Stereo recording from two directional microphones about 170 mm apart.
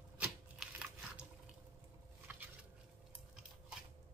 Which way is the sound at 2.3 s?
10° right (ahead or behind).